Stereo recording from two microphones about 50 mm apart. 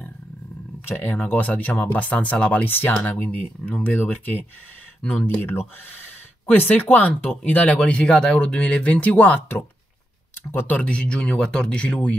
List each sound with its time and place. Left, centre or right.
0.8 s speech: left
2.6 s speech: left
3.0 s speech: left
6.4 s speech: left
10.8 s speech: left